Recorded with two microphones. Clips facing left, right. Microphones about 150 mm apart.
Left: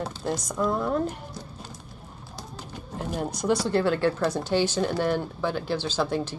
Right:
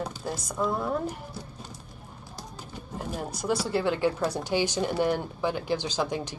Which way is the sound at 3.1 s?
5° right (ahead or behind).